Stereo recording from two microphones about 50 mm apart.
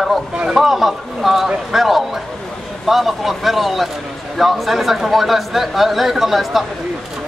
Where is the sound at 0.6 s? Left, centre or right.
Centre.